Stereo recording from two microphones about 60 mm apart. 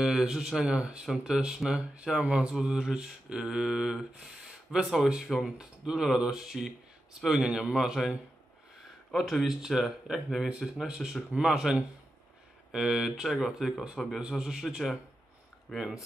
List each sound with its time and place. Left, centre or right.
0.0 s mantra: centre
4.2 s speech: centre
5.3 s mantra: centre
9.1 s speech: centre
9.5 s mantra: centre
15.7 s speech: centre